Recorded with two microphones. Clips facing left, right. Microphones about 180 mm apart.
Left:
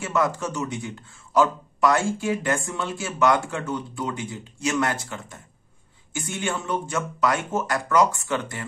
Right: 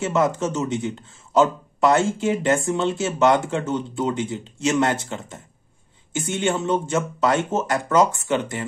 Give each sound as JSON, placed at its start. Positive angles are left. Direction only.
{"t": 0.0, "sound": "speech", "side_deg": -25}